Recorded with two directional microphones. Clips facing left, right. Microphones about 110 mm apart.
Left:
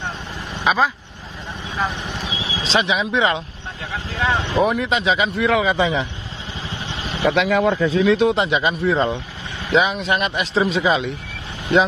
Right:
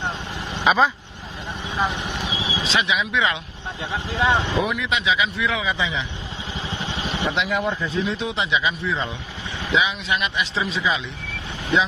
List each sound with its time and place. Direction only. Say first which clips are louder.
0.7 s speech: even; centre (ahead or behind)
1.8 s vehicle: even; 15° right (ahead or behind)
2.6 s speech: left 4 dB; 35° left (ahead or behind)
3.9 s speech: right 1 dB; 20° right (ahead or behind)
4.6 s speech: left 4 dB; 40° left (ahead or behind)
7.2 s speech: left 8 dB; 90° left
8.3 s speech: left 5 dB; 50° left (ahead or behind)